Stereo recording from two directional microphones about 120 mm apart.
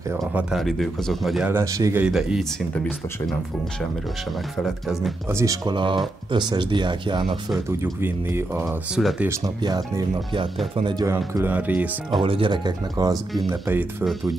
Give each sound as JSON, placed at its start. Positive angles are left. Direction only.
{"t": 0.3, "sound": "speech", "side_deg": -10}
{"t": 0.6, "sound": "speech", "side_deg": 0}
{"t": 1.4, "sound": "speech", "side_deg": -20}
{"t": 2.0, "sound": "speech", "side_deg": -5}
{"t": 4.6, "sound": "speech", "side_deg": 0}
{"t": 5.3, "sound": "speech", "side_deg": -25}
{"t": 5.7, "sound": "speech", "side_deg": -40}
{"t": 7.8, "sound": "speech", "side_deg": -20}
{"t": 9.0, "sound": "speech", "side_deg": 0}
{"t": 9.4, "sound": "speech", "side_deg": -35}
{"t": 11.1, "sound": "speech", "side_deg": -20}
{"t": 12.1, "sound": "speech", "side_deg": -45}
{"t": 13.5, "sound": "speech", "side_deg": -20}